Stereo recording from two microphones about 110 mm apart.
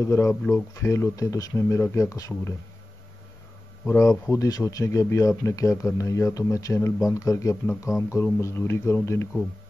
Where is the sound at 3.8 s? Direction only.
30° left (ahead or behind).